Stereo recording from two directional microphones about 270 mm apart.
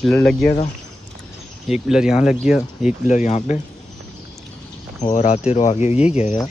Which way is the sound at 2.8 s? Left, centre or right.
Left.